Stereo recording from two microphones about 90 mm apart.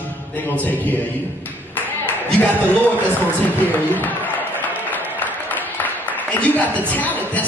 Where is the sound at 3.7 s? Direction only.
20° left (ahead or behind).